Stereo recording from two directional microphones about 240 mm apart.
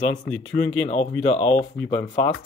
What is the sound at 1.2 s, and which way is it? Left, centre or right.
Speech, left.